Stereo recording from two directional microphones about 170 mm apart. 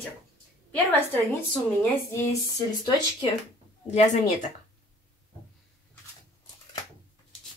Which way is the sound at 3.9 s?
45° left (ahead or behind).